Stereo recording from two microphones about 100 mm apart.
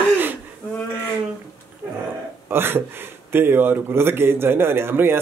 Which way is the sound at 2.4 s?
20° right (ahead or behind).